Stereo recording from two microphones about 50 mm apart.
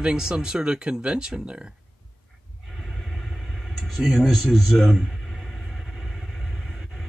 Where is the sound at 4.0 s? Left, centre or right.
Centre.